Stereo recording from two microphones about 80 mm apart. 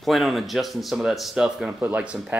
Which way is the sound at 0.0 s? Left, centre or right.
Centre.